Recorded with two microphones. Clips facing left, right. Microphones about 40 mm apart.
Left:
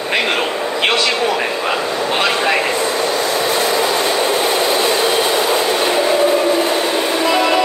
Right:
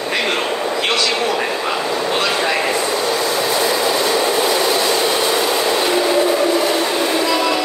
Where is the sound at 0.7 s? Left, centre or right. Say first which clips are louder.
Left 4 dB; left.